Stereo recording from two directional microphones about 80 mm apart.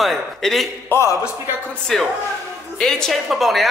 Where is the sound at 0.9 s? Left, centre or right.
Left.